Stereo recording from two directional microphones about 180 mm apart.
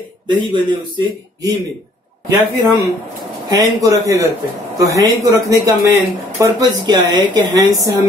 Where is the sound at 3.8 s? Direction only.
20° right (ahead or behind).